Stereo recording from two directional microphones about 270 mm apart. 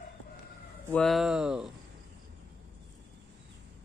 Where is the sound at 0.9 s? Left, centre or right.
Centre.